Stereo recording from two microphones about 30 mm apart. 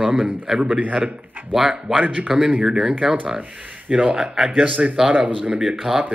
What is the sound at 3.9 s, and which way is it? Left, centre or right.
Speech, right.